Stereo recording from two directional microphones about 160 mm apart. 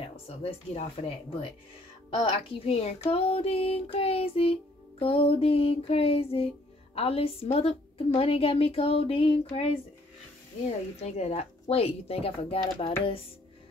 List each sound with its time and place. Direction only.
0.0 s child singing: 40° left (ahead or behind)
11.0 s child singing: 40° left (ahead or behind)